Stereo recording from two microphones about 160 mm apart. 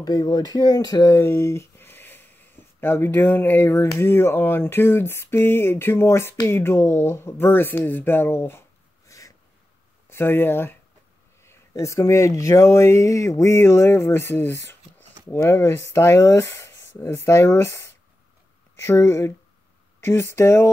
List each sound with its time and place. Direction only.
0.0 s speech: 25° left (ahead or behind)